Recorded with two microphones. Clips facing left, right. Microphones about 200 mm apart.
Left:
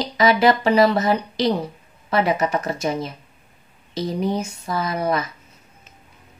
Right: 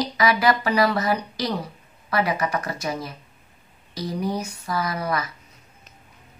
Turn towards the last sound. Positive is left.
turn(degrees=25)  # may be behind; listen again after turning